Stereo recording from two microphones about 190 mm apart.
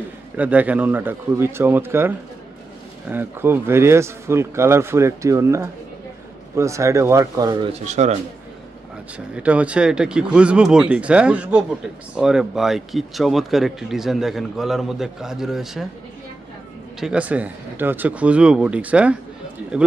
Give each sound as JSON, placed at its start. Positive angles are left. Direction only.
{"t": 0.4, "sound": "speech", "side_deg": -10}
{"t": 7.8, "sound": "speech", "side_deg": -35}
{"t": 9.3, "sound": "speech", "side_deg": -5}
{"t": 17.0, "sound": "speech", "side_deg": -5}